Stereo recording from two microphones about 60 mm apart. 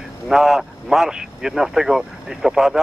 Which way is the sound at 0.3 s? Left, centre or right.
Centre.